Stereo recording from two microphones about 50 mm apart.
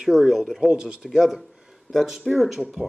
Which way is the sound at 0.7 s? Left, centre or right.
Centre.